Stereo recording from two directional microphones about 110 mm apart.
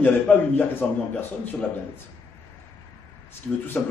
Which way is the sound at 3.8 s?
15° left (ahead or behind).